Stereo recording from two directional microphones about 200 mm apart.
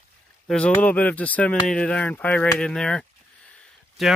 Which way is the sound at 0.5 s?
5° left (ahead or behind).